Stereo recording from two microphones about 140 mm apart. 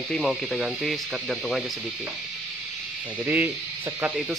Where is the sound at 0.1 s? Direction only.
Centre (ahead or behind).